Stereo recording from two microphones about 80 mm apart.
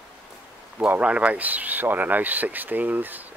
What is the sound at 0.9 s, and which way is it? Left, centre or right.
Speech, centre.